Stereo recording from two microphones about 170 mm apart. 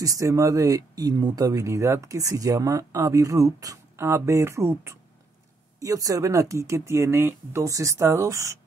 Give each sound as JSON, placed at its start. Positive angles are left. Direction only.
{"t": 0.0, "sound": "speech", "side_deg": -20}